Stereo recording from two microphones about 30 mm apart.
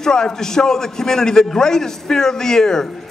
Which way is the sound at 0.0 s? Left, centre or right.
Left.